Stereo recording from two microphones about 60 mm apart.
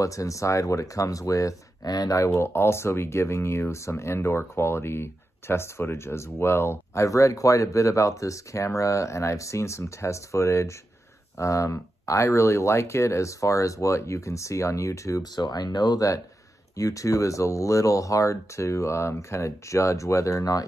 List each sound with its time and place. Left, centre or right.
0.0 s speech: left
2.2 s speech: left
16.7 s speech: left